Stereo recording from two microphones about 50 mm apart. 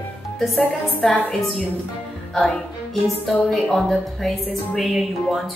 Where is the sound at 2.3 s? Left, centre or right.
Centre.